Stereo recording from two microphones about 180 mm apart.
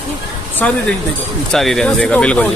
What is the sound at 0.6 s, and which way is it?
Speech, 5° left (ahead or behind).